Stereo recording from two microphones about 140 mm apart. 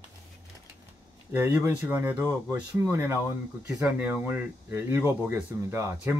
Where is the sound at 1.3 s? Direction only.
15° right (ahead or behind).